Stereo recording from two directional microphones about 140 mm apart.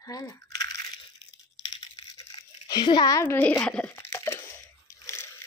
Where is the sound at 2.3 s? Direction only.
30° left (ahead or behind).